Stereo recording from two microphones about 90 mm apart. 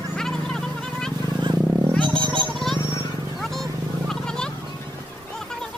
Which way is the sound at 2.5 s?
5° left (ahead or behind).